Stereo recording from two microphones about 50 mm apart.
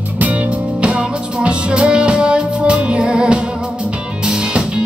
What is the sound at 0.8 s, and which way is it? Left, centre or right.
Music, centre.